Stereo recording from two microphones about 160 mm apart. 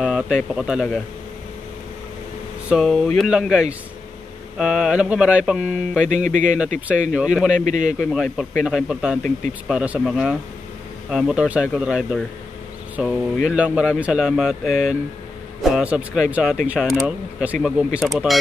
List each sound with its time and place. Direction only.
0.0 s bird: 5° right (ahead or behind)
0.6 s speech: 5° right (ahead or behind)
2.7 s speech: centre (ahead or behind)
6.0 s speech: 50° right (ahead or behind)
7.2 s speech: 5° right (ahead or behind)
7.5 s speech: 50° right (ahead or behind)
7.8 s speech: centre (ahead or behind)